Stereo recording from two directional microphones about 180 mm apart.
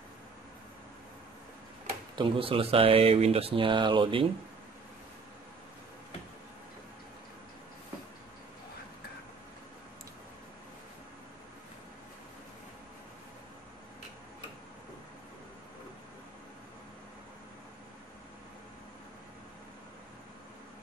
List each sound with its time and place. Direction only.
2.1 s speech: 30° right (ahead or behind)